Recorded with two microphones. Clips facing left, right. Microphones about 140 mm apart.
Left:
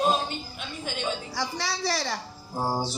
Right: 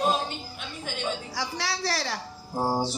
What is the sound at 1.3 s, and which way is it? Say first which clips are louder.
Speech: left 1 dB; 5° right (ahead or behind).